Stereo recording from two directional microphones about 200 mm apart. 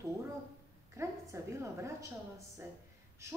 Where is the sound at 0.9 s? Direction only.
15° right (ahead or behind).